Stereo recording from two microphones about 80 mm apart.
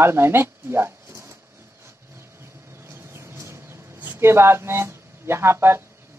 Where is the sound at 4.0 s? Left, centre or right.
Right.